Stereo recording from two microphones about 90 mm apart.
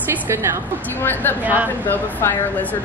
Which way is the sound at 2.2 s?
30° left (ahead or behind).